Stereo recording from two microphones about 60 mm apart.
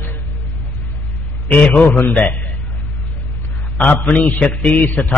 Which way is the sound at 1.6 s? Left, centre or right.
Left.